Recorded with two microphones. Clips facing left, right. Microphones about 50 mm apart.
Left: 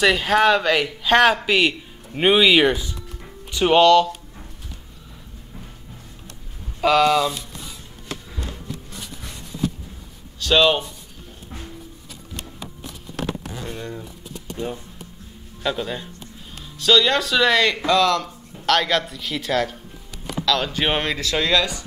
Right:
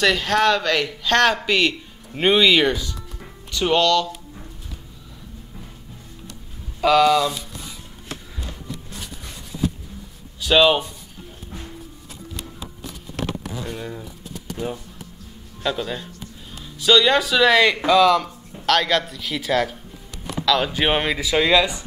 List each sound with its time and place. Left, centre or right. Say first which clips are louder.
0.0 s a man's voice: left 1 dB; centre
6.8 s speech: right 1 dB; centre
10.4 s speech: right 1 dB; centre
13.7 s speech: right 1 dB; centre
15.6 s speech: even; centre